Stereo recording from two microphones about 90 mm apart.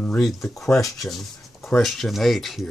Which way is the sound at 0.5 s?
30° left (ahead or behind).